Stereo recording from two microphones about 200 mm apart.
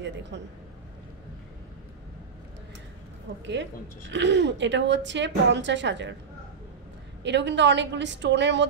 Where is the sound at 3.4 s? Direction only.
60° right (ahead or behind).